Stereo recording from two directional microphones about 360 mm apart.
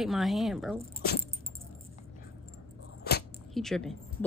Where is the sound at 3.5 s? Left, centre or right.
Centre.